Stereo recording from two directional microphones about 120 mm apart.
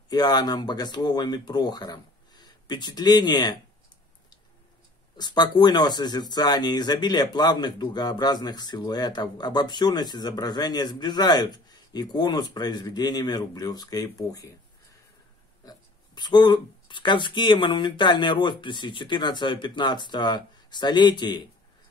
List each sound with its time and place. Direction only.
0.1 s speech: 35° left (ahead or behind)
5.1 s speech: 35° left (ahead or behind)
16.2 s speech: 35° left (ahead or behind)